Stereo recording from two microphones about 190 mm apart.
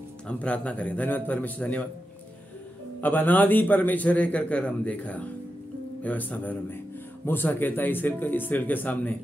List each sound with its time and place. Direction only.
0.3 s a man's voice: 5° left (ahead or behind)
3.0 s a man's voice: 10° left (ahead or behind)